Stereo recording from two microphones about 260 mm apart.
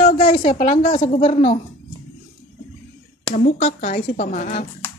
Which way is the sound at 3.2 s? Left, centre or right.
Left.